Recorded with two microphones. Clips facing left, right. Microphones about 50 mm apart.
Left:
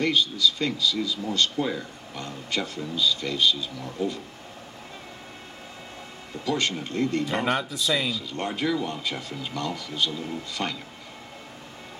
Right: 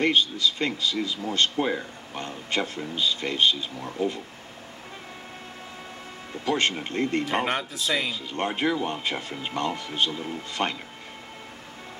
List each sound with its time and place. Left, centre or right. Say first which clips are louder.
0.0 s speech: right 1 dB; right
6.4 s speech: right 2 dB; right